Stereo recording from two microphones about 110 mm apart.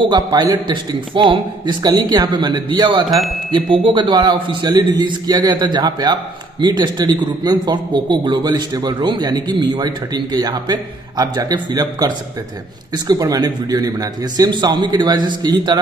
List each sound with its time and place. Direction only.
0.3 s a man's voice: 40° right (ahead or behind)